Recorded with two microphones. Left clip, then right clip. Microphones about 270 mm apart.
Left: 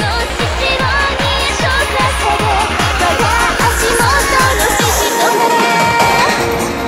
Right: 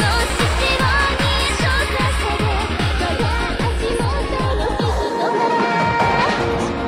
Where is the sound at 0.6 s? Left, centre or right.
Centre; by 4.9 s left.